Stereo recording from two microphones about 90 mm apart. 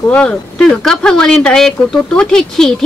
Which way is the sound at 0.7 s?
5° left (ahead or behind).